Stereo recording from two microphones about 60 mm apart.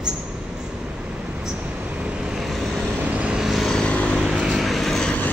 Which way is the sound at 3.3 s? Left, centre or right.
Centre.